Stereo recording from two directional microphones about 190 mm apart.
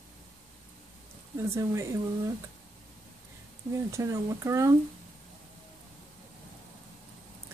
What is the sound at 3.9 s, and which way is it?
Speech, 15° right (ahead or behind).